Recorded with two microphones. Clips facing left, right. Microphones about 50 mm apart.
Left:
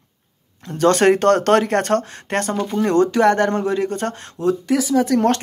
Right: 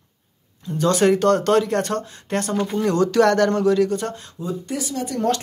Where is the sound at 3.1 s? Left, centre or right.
Left.